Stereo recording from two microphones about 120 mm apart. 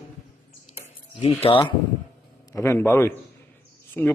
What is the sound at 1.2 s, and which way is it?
Speech, 55° left (ahead or behind).